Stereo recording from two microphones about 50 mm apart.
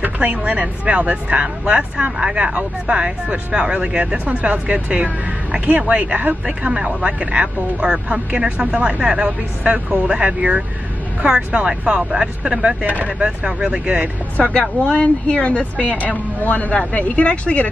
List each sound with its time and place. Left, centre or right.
0.0 s speech: right
12.8 s speech: right
13.2 s speech: centre
14.5 s a woman's voice: centre